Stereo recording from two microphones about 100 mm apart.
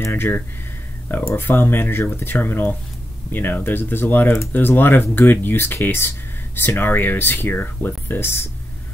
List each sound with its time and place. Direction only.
0.0 s speech: 20° left (ahead or behind)